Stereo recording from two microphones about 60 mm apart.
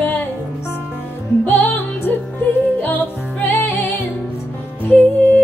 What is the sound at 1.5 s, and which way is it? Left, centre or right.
Music, left.